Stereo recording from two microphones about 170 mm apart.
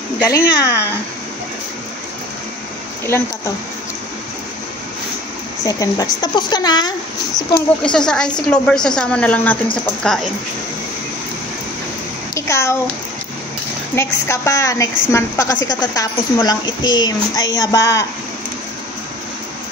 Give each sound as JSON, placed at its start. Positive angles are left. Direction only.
{"t": 0.2, "sound": "speech", "side_deg": 20}
{"t": 5.6, "sound": "a woman's voice", "side_deg": 20}
{"t": 7.5, "sound": "a woman's voice", "side_deg": 5}
{"t": 12.4, "sound": "a sound", "side_deg": 15}
{"t": 13.9, "sound": "a woman's voice", "side_deg": 15}